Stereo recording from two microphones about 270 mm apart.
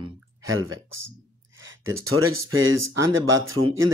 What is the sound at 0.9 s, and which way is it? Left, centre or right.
Speech, right.